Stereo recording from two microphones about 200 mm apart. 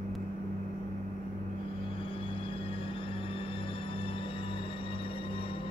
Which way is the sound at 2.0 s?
25° left (ahead or behind).